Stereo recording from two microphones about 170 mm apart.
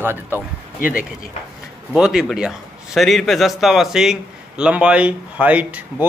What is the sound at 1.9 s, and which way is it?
A man's voice, centre (ahead or behind).